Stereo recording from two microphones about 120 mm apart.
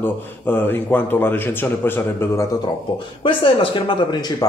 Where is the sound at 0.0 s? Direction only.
15° left (ahead or behind).